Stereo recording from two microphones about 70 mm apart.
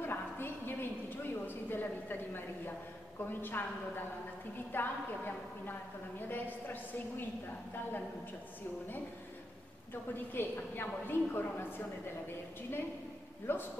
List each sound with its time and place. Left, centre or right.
0.0 s a sound: left
1.5 s a woman's voice: left
10.3 s a woman's voice: left
13.5 s a woman's voice: left